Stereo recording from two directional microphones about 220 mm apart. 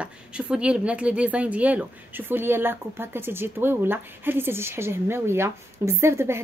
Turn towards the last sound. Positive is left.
turn(degrees=-10)  # may be behind; listen again after turning